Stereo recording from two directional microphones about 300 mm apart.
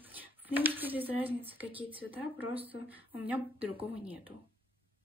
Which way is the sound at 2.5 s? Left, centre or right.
Centre.